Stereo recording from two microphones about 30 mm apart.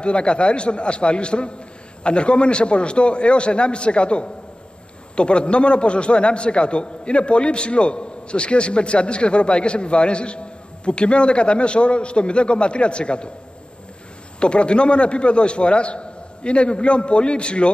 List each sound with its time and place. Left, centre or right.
0.0 s a man's voice: left
14.4 s a man's voice: left